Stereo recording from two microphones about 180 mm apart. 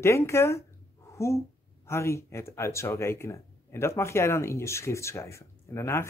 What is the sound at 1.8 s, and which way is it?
Speech, 15° left (ahead or behind).